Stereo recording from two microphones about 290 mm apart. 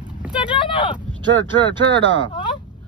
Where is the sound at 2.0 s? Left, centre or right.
Right.